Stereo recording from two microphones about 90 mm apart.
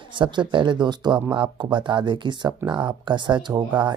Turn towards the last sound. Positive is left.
turn(degrees=-55)  # may be behind; listen again after turning